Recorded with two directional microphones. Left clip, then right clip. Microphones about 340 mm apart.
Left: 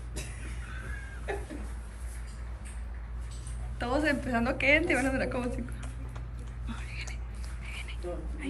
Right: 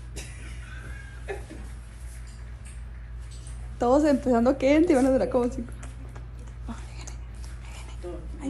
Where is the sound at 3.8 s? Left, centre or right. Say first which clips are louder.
Right 8 dB; centre.